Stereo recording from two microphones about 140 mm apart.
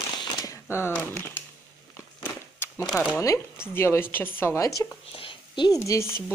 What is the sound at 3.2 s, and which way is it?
Speech, 20° left (ahead or behind).